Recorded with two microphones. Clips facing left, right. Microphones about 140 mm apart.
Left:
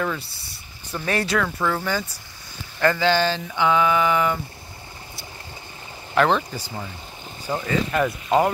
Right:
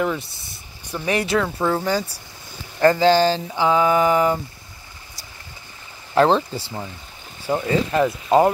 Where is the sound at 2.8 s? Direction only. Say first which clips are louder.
Right 5 dB; 35° right (ahead or behind).